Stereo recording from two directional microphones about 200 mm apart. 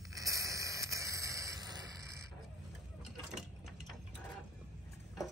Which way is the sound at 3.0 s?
5° right (ahead or behind).